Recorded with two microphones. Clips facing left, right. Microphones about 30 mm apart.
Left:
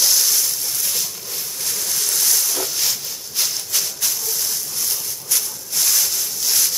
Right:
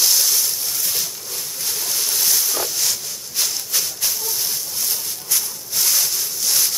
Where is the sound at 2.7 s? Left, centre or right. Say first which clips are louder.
Even; centre.